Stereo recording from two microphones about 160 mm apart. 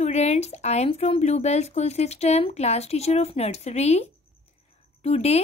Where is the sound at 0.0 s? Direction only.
45° left (ahead or behind).